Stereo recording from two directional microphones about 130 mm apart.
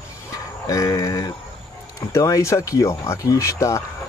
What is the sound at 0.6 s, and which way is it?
Speech, 25° left (ahead or behind).